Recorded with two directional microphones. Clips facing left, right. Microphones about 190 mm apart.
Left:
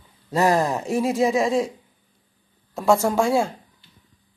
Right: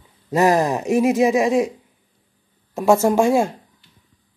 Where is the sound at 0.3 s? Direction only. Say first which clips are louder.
Right 3 dB; 20° right (ahead or behind).